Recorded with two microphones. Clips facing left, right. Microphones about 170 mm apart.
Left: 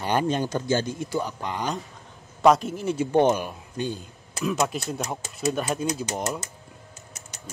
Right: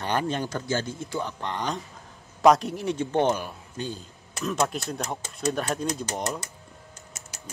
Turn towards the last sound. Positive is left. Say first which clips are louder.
# left 2 dB
turn(degrees=0)  # may be behind; listen again after turning